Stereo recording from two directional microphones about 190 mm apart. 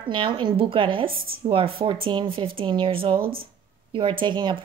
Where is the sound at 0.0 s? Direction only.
25° right (ahead or behind).